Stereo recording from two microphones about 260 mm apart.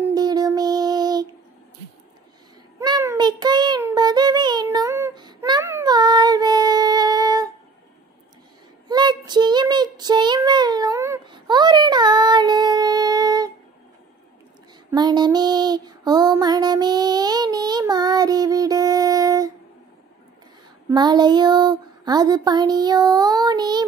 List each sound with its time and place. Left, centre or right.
0.1 s music: centre
2.8 s child singing: centre
8.8 s child singing: centre
14.9 s female singing: centre
20.9 s child singing: centre